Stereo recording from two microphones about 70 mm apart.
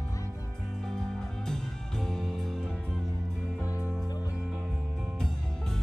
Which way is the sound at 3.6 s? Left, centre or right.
Right.